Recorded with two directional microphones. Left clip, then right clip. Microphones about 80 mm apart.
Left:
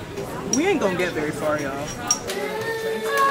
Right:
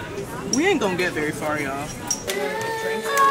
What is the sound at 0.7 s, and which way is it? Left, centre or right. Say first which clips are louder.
Speech: even; centre.